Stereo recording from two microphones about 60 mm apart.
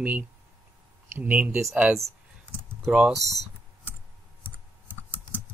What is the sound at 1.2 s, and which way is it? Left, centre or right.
Speech, right.